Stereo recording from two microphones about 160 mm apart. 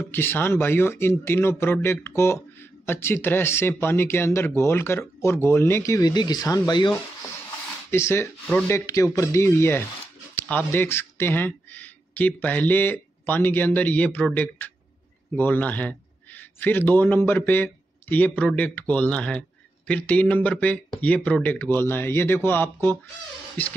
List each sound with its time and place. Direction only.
0.0 s speech: 15° left (ahead or behind)
7.9 s a man's voice: 15° left (ahead or behind)